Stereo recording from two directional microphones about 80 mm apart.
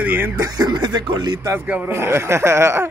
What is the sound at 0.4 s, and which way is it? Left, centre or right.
Speech, right.